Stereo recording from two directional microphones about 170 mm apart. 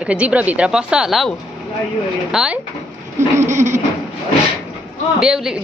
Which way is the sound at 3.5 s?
45° right (ahead or behind).